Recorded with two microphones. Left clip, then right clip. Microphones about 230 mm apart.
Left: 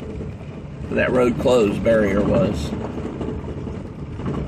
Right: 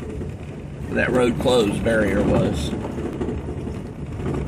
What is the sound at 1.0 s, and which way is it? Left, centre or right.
Speech, centre.